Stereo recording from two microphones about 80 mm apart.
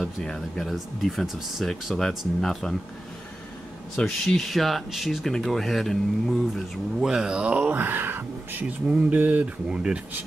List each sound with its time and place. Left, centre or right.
0.0 s speech: centre
3.9 s speech: centre
7.5 s speech: right